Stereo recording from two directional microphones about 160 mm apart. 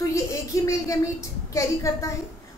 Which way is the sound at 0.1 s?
20° left (ahead or behind).